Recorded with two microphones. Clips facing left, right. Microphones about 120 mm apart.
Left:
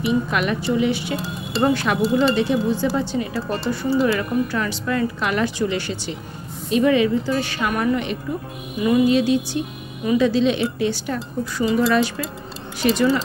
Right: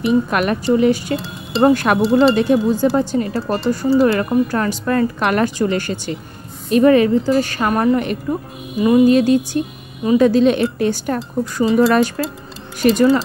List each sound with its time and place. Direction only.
0.3 s speech: 50° right (ahead or behind)